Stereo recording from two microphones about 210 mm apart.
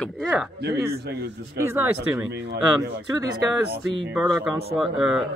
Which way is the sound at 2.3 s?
55° right (ahead or behind).